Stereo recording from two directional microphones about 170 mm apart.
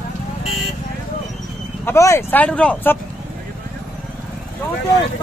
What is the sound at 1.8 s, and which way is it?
Speech, 15° left (ahead or behind).